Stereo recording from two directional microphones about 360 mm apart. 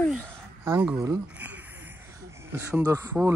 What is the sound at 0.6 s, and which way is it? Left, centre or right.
Speech, centre.